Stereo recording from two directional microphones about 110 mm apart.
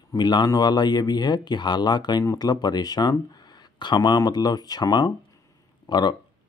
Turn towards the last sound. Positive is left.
turn(degrees=40)  # may be behind; listen again after turning